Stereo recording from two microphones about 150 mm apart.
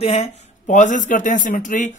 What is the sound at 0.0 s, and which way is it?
Speech, 45° left (ahead or behind).